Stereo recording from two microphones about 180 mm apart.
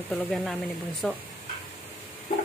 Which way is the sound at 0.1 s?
5° left (ahead or behind).